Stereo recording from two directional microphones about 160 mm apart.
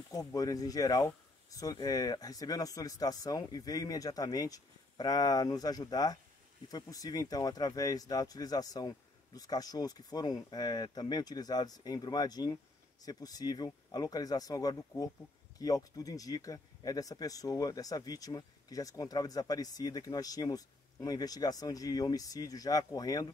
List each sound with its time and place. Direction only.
0.1 s speech: 20° left (ahead or behind)